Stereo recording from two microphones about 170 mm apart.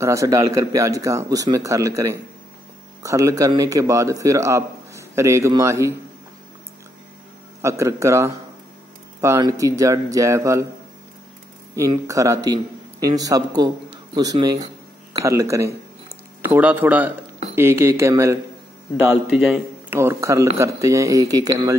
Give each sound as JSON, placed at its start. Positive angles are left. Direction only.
{"t": 0.0, "sound": "a man's voice", "side_deg": -20}
{"t": 7.6, "sound": "a man's voice", "side_deg": -15}
{"t": 12.1, "sound": "a man's voice", "side_deg": -20}
{"t": 19.0, "sound": "a man's voice", "side_deg": -5}